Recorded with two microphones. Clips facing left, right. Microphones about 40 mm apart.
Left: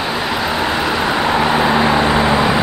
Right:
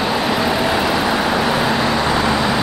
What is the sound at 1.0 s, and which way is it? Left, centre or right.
Vehicle, left.